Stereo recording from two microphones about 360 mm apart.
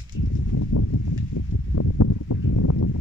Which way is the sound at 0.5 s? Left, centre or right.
Left.